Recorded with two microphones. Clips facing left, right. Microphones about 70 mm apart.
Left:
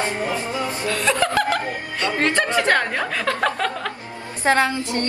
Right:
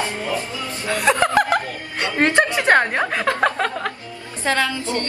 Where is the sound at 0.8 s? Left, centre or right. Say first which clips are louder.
Right 4 dB; right.